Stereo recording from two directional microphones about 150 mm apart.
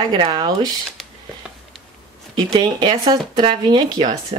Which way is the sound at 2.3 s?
30° right (ahead or behind).